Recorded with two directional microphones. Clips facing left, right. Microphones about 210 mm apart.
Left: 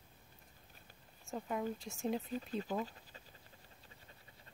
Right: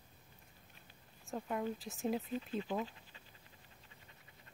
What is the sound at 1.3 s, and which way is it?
Speech, centre (ahead or behind).